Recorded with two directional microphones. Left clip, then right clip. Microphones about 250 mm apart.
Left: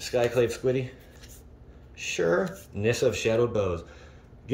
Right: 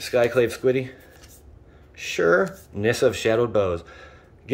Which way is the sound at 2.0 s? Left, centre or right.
Centre.